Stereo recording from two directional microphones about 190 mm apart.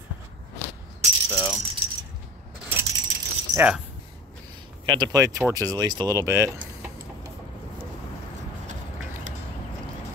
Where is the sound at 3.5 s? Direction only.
5° right (ahead or behind).